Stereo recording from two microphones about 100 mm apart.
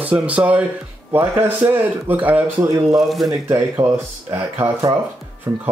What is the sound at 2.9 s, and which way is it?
Speech, centre (ahead or behind).